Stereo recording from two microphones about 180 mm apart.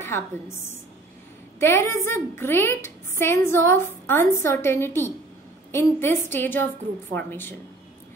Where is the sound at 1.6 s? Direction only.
15° left (ahead or behind).